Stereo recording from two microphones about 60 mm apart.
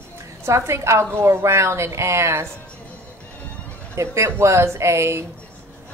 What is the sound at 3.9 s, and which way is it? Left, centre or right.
Speech, right.